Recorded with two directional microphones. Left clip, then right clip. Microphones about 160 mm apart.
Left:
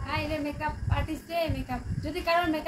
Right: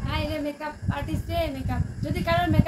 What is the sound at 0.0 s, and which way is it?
A woman's voice, 5° right (ahead or behind).